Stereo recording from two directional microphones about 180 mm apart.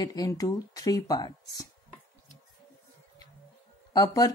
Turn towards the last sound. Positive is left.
turn(degrees=20)  # may be behind; listen again after turning